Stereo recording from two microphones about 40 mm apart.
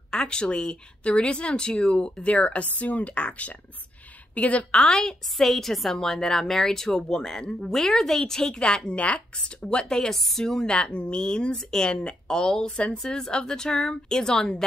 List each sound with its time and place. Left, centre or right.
0.1 s speech: centre; by 4.7 s left
4.7 s a woman's voice: centre
10.1 s a woman's voice: centre
10.4 s a woman's voice: centre